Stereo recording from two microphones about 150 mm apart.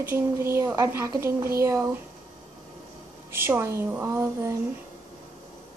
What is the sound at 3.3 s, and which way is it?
A woman's voice, 15° right (ahead or behind).